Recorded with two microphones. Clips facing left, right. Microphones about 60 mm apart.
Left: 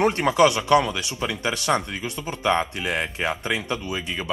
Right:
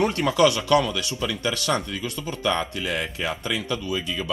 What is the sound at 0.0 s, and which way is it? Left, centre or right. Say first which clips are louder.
Speech: left 1 dB; left.